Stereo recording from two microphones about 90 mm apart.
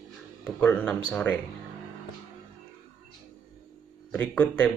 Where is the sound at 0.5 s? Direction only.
20° left (ahead or behind).